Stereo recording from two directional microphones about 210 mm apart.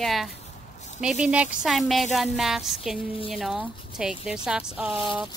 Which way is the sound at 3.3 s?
Centre (ahead or behind).